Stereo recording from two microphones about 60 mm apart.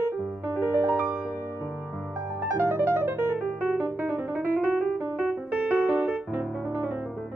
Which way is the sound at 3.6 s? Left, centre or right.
Right.